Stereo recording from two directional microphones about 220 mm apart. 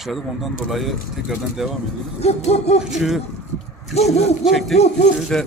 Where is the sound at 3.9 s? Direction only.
30° left (ahead or behind).